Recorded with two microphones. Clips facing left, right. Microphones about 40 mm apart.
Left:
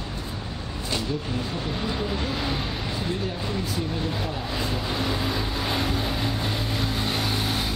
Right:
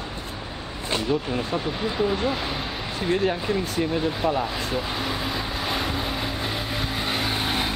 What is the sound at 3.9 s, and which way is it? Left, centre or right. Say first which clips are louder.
Speech: right 6 dB; right.